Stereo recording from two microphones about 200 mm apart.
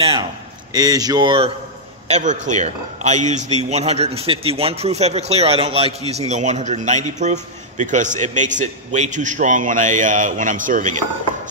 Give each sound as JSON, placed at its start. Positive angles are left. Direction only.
{"t": 0.0, "sound": "speech", "side_deg": -25}
{"t": 2.0, "sound": "a man's voice", "side_deg": -35}